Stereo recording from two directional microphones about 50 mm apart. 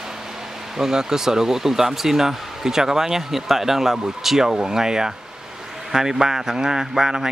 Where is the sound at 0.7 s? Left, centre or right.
Centre.